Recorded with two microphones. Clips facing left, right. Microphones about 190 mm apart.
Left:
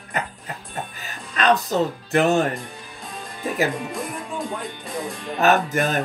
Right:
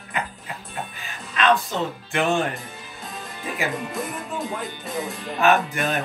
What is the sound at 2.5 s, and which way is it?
Music, centre (ahead or behind).